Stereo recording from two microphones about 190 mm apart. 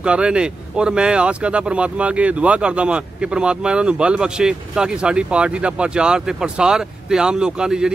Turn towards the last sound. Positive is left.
turn(degrees=-5)  # may be behind; listen again after turning